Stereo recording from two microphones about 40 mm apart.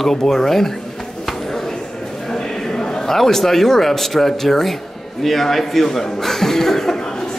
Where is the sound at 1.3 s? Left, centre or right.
Centre.